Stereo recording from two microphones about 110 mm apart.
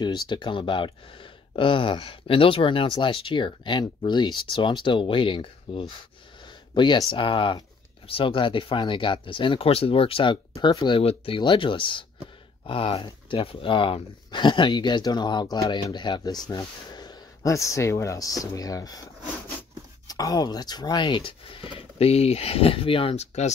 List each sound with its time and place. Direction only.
0.0 s speech: 45° left (ahead or behind)
6.4 s a sound: 45° left (ahead or behind)
7.1 s speech: 50° left (ahead or behind)
9.7 s speech: 60° left (ahead or behind)
10.6 s speech: 40° left (ahead or behind)
11.0 s speech: 55° left (ahead or behind); by 19.0 s 35° left (ahead or behind)
20.1 s speech: 35° left (ahead or behind); by 23.5 s 75° left (ahead or behind)